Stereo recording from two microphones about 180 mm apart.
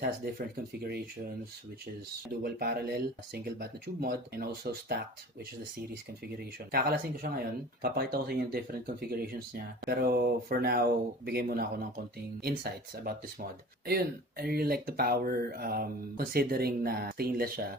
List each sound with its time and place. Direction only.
0.0 s speech: 55° right (ahead or behind)
2.4 s speech: 60° right (ahead or behind)
6.7 s speech: 55° right (ahead or behind)